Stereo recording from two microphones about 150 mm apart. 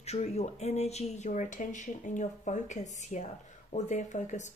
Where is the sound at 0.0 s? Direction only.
45° left (ahead or behind).